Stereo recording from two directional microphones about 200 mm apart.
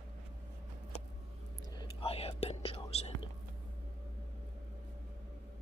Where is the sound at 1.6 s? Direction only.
20° left (ahead or behind).